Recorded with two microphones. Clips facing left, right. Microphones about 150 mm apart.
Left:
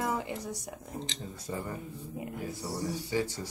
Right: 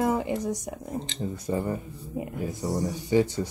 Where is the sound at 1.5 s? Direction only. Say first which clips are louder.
Right 7 dB; 30° right (ahead or behind).